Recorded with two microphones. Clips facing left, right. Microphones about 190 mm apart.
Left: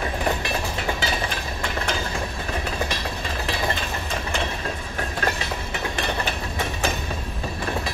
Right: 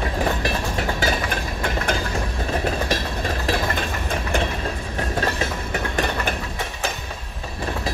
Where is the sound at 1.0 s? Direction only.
50° right (ahead or behind).